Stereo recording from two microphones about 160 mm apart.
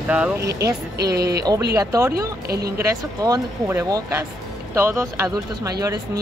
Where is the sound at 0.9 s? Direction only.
90° right.